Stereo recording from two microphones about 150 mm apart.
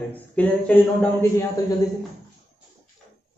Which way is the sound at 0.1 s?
10° left (ahead or behind).